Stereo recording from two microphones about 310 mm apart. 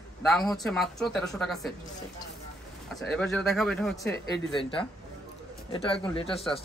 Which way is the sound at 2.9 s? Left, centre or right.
Centre.